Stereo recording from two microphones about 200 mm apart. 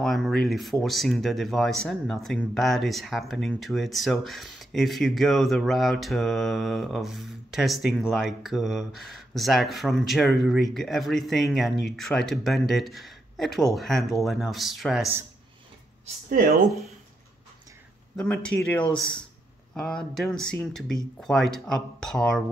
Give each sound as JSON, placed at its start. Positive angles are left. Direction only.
{"t": 0.0, "sound": "speech", "side_deg": 0}
{"t": 16.3, "sound": "speech", "side_deg": -45}
{"t": 18.1, "sound": "speech", "side_deg": 5}